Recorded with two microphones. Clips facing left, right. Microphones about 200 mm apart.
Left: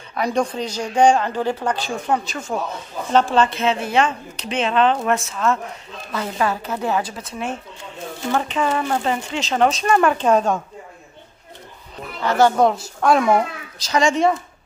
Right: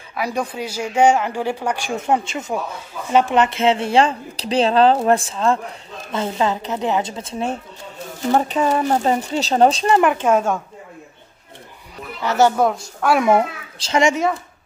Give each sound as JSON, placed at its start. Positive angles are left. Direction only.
{"t": 0.1, "sound": "a woman's voice", "side_deg": -5}
{"t": 9.8, "sound": "a woman's voice", "side_deg": -20}
{"t": 12.2, "sound": "a woman's voice", "side_deg": -10}
{"t": 12.7, "sound": "a woman's voice", "side_deg": 5}
{"t": 13.2, "sound": "a child's voice", "side_deg": -25}